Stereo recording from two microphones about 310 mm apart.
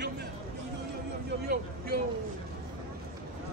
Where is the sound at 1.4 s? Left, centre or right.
Right.